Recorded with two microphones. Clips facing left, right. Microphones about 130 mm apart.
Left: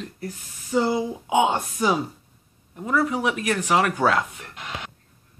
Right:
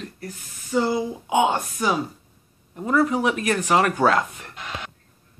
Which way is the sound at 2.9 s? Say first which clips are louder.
Right 2 dB; 5° left (ahead or behind).